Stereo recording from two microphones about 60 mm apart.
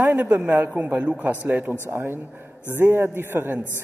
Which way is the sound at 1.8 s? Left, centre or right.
Right.